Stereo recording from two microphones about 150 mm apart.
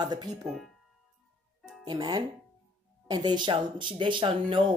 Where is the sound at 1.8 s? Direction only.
30° right (ahead or behind).